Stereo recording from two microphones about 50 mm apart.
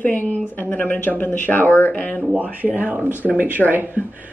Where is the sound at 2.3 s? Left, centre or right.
Right.